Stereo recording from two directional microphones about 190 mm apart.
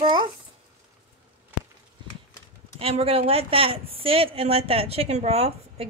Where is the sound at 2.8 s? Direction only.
30° right (ahead or behind).